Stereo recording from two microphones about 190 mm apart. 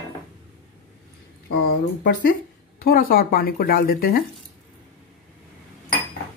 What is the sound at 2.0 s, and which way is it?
Speech, 50° left (ahead or behind).